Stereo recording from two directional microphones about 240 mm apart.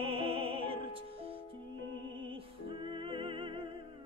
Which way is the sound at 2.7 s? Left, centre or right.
Right.